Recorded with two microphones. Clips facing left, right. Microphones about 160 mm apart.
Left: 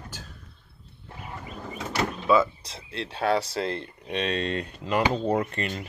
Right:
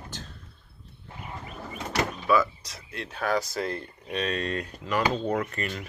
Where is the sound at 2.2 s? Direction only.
25° left (ahead or behind).